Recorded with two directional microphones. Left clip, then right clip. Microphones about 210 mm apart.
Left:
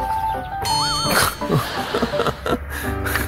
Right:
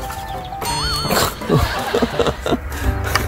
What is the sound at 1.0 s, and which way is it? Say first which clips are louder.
Music: right 1 dB; 15° right (ahead or behind).